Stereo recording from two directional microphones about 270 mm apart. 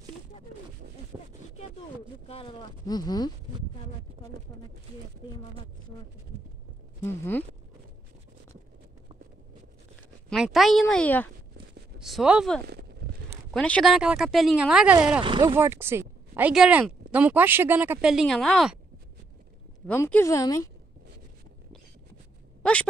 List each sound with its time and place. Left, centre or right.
0.8 s a sound: right
2.2 s speech: centre
7.0 s speech: centre
10.3 s speech: centre
12.6 s a sound: right
13.5 s speech: centre
15.2 s speech: centre
19.9 s speech: centre
22.6 s speech: centre